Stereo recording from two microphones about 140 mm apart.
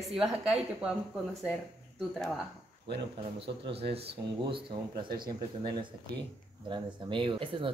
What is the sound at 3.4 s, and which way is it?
Speech, 45° right (ahead or behind).